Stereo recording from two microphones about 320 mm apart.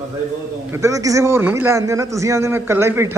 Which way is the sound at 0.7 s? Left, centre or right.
Centre.